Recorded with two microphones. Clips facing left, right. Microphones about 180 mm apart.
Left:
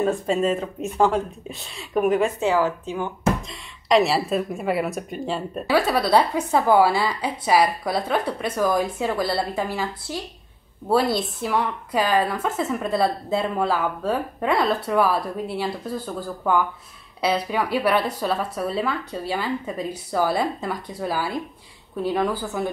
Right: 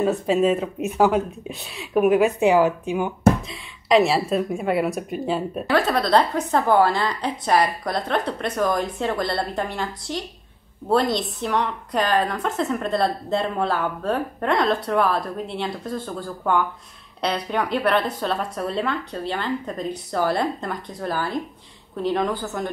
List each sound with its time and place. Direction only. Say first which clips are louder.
0.0 s a woman's voice: right 2 dB; centre (ahead or behind)
2.4 s speech: right 4 dB; 15° right (ahead or behind)
3.4 s a woman's voice: right 1 dB; centre (ahead or behind)
5.8 s a woman's voice: even; 10° left (ahead or behind)